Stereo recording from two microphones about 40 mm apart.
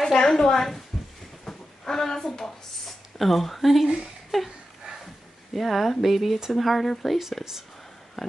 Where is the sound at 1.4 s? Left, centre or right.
Centre.